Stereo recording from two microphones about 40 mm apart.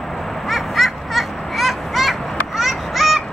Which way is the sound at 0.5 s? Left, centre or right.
Centre.